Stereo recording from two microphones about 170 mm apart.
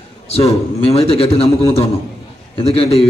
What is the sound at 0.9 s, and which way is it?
Speech, 35° left (ahead or behind).